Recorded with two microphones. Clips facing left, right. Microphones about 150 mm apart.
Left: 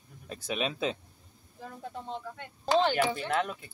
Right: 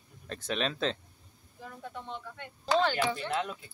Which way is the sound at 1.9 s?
35° left (ahead or behind).